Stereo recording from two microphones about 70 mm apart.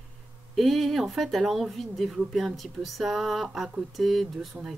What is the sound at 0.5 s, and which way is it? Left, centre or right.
Speech, centre.